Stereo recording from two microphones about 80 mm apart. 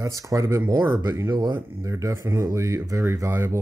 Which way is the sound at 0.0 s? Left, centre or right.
Right.